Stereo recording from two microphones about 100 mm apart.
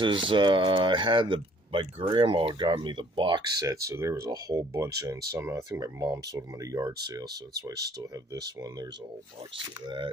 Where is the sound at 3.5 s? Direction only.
35° right (ahead or behind).